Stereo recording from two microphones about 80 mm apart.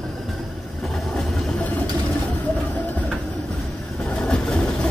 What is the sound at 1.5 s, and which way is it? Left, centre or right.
Vehicle, centre.